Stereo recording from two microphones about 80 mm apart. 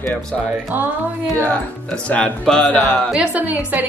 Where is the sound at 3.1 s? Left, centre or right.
Centre.